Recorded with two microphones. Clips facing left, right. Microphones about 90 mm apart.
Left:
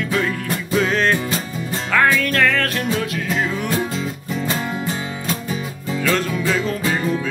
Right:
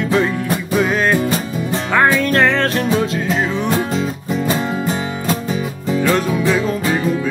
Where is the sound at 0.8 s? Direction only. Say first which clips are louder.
Right 1 dB; 10° right (ahead or behind).